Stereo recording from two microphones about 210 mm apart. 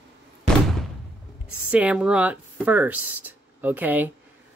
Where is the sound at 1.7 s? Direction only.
5° right (ahead or behind).